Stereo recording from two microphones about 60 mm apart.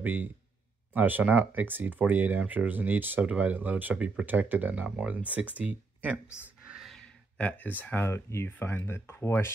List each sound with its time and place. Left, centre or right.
0.0 s speech: right
7.3 s speech: left
8.1 s speech: left
8.5 s speech: left